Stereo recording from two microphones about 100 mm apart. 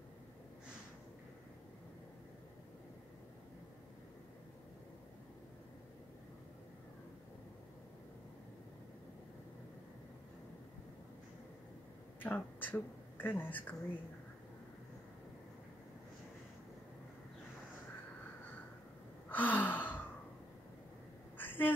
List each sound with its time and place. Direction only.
12.2 s speech: 15° left (ahead or behind)
19.2 s gasp: 15° left (ahead or behind)
21.4 s a sound: 20° left (ahead or behind)